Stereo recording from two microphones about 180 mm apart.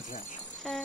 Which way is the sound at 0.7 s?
Centre (ahead or behind).